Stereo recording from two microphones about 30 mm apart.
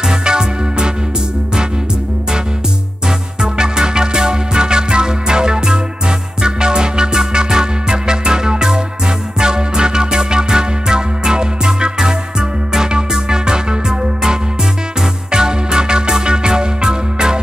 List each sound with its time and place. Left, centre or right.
0.0 s music: right
3.4 s music: right